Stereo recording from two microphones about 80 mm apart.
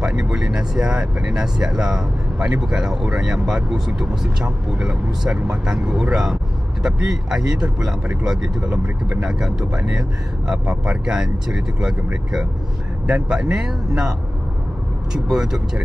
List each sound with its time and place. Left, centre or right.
0.0 s speech: centre
15.2 s speech: centre